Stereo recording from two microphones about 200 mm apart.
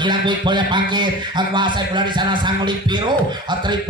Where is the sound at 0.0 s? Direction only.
25° right (ahead or behind).